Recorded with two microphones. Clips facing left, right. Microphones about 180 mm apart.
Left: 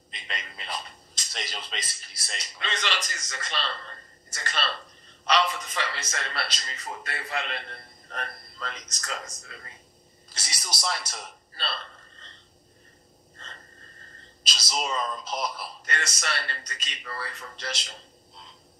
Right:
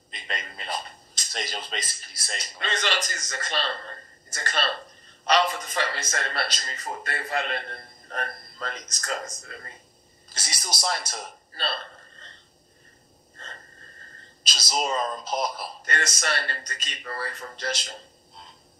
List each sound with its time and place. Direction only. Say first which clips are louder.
0.1 s a man's voice: right 3 dB; 45° right (ahead or behind)
14.4 s speech: right 3 dB; 45° right (ahead or behind)